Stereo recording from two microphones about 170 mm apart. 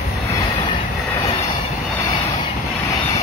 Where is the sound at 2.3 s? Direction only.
25° left (ahead or behind).